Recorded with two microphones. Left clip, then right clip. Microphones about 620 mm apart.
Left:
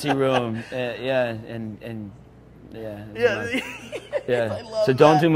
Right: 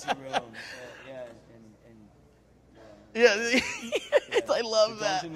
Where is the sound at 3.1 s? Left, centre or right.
Right.